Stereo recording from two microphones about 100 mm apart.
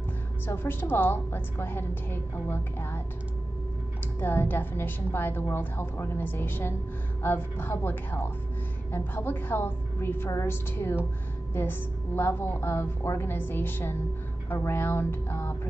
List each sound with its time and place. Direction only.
0.5 s a woman's voice: 20° left (ahead or behind)
4.2 s a woman's voice: 20° left (ahead or behind)